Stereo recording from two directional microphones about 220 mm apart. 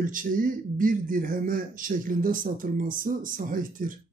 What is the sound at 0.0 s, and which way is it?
Speech, 40° right (ahead or behind).